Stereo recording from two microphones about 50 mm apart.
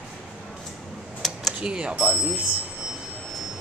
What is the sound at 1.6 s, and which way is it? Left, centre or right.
Speech, centre.